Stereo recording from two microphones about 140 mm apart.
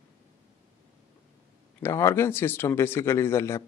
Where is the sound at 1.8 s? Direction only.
20° left (ahead or behind).